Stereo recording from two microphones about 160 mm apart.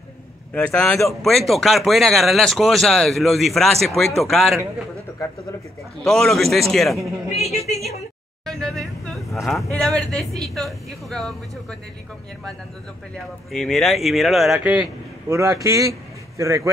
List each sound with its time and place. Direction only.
0.5 s speech: 10° left (ahead or behind)
6.0 s speech: centre (ahead or behind)
7.5 s speech: 40° left (ahead or behind)
8.5 s speech: 5° left (ahead or behind)
13.5 s a man's voice: centre (ahead or behind); by 16.7 s 15° right (ahead or behind)